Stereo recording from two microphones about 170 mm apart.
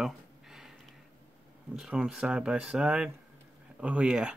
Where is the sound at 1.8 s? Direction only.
5° right (ahead or behind).